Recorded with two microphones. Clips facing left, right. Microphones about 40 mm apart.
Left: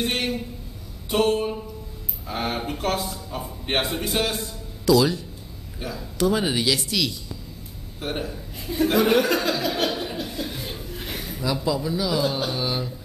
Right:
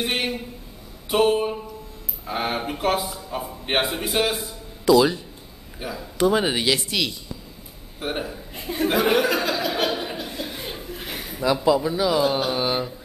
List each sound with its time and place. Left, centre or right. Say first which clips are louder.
0.0 s a sound: even; centre
2.2 s a man's voice: right 2 dB; centre
8.0 s a sound: right 1 dB; centre
8.5 s speech: left 1 dB; right
8.9 s chuckle: even; centre
11.4 s a man's voice: right 5 dB; right
12.1 s a man's voice: right 4 dB; centre